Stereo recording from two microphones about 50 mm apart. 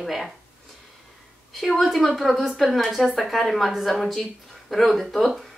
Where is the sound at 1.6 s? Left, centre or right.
Centre.